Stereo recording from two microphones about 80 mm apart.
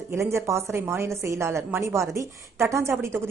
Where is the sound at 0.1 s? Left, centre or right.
Right.